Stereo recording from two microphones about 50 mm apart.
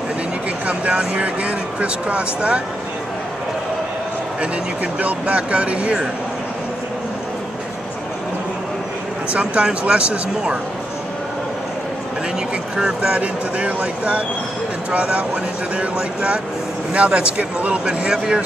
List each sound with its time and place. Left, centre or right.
0.7 s speech: right
4.9 s speech: right
9.3 s speech: right
12.7 s speech: centre